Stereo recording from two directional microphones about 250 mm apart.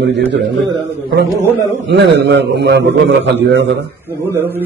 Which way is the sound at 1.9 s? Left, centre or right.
Right.